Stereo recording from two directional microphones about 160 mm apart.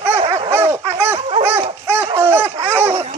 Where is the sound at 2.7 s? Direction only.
15° right (ahead or behind).